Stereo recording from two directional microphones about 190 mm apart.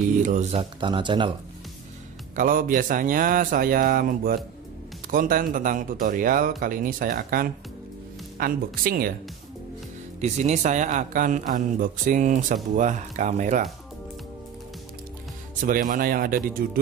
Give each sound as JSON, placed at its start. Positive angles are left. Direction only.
{"t": 0.2, "sound": "speech", "side_deg": -40}
{"t": 2.3, "sound": "speech", "side_deg": -45}
{"t": 10.2, "sound": "speech", "side_deg": -40}
{"t": 15.6, "sound": "speech", "side_deg": -45}